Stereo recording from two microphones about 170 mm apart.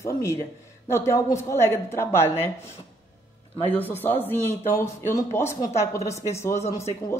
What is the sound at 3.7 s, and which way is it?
Speech, 10° left (ahead or behind).